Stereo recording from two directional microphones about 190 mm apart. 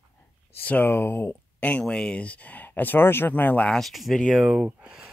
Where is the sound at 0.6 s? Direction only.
10° left (ahead or behind).